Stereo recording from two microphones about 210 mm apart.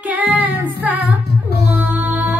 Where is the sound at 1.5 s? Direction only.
50° left (ahead or behind).